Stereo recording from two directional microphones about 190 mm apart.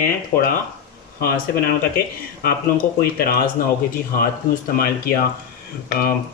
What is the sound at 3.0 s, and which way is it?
Speech, 50° left (ahead or behind).